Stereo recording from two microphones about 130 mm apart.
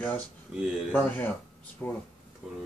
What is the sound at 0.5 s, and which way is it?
Speech, 5° right (ahead or behind).